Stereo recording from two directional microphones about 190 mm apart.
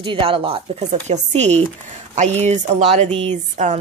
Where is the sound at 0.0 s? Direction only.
25° right (ahead or behind).